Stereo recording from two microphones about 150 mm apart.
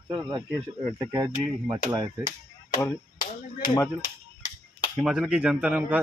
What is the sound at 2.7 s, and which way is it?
Speech, 20° left (ahead or behind).